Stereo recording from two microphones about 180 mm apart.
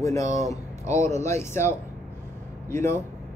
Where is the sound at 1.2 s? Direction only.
15° left (ahead or behind).